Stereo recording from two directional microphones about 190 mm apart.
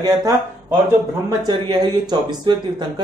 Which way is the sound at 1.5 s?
20° right (ahead or behind).